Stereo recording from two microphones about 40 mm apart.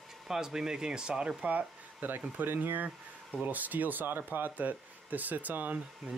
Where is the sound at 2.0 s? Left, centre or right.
Right.